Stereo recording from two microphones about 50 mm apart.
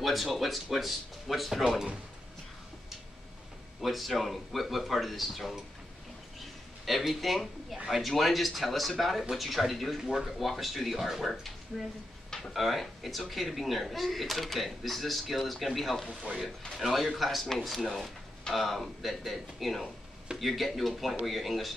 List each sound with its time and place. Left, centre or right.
0.0 s speech: centre
3.8 s speech: centre
6.9 s speech: centre
12.3 s speech: centre